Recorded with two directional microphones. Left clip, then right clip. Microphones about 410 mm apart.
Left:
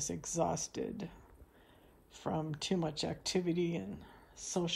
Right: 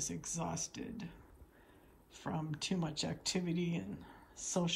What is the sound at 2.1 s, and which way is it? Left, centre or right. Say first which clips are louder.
A woman's voice: left 4 dB; centre.